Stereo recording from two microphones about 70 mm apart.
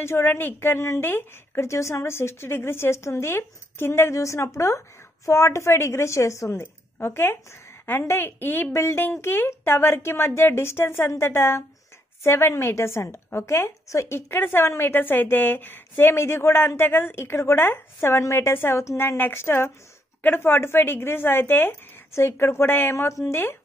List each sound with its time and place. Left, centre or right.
0.0 s a woman's voice: left